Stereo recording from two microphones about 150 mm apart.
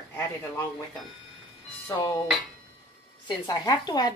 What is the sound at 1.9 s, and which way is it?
Speech, 25° left (ahead or behind).